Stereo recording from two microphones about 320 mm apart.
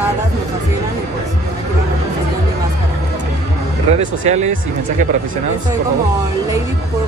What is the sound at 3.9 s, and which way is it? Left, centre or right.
Speech, right.